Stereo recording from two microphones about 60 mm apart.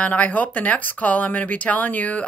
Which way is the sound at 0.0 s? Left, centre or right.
Left.